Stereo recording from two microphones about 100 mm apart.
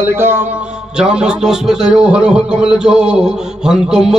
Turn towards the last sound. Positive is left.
turn(degrees=-5)  # may be behind; listen again after turning